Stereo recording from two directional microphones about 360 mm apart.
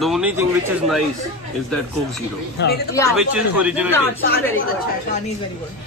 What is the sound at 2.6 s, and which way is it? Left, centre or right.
Speech, left.